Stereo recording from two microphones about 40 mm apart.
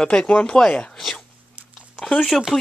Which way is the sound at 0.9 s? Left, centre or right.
Centre.